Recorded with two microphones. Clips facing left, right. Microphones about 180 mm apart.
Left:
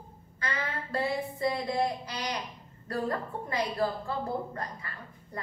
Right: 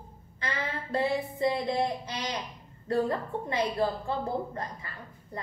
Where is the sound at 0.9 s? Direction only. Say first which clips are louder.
Right 3 dB; 20° right (ahead or behind).